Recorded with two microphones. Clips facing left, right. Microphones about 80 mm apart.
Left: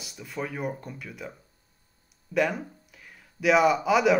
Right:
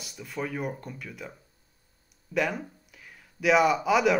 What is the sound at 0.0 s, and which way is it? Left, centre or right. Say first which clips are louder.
Speech: even; centre.